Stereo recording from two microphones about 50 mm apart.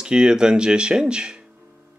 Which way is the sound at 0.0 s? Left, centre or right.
Centre.